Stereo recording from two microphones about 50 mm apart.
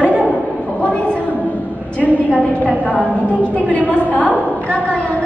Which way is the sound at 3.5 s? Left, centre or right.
Left.